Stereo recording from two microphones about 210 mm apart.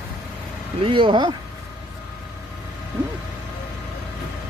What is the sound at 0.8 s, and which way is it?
Speech, 25° right (ahead or behind).